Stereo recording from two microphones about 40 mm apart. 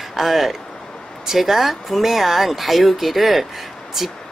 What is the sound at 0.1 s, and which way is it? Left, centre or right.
Speech, centre.